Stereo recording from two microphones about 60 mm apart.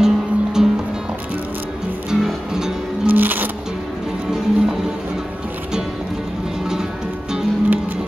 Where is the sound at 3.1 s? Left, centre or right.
Right.